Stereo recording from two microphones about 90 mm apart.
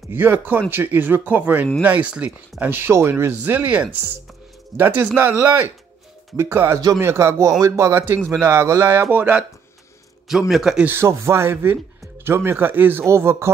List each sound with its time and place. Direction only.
0.1 s speech: 25° right (ahead or behind)
9.1 s speech: 20° right (ahead or behind)
10.5 s speech: 5° right (ahead or behind)
10.9 s speech: 30° right (ahead or behind)